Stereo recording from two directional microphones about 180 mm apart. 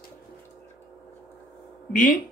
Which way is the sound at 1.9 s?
45° left (ahead or behind).